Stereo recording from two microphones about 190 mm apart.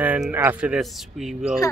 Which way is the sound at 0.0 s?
10° right (ahead or behind).